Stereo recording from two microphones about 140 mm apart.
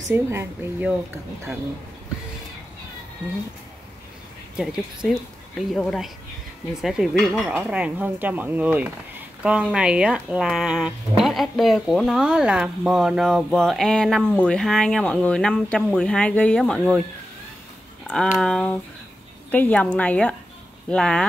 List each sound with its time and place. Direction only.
0.1 s speech: 15° right (ahead or behind)
4.6 s speech: 5° right (ahead or behind)
18.0 s a woman's voice: 5° left (ahead or behind)